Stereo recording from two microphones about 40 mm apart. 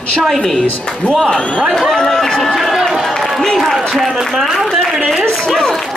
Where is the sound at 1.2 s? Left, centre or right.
Left.